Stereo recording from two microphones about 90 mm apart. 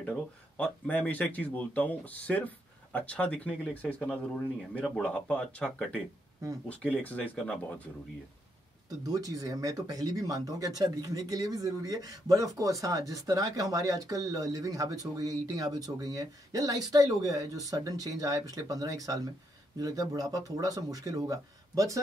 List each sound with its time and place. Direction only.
0.0 s speech: 15° left (ahead or behind)
9.0 s speech: 40° right (ahead or behind)